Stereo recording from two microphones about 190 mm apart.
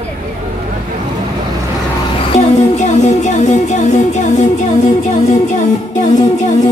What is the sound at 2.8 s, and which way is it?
Music, 40° left (ahead or behind).